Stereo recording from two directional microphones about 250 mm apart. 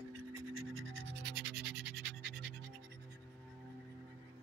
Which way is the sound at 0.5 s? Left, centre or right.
Right.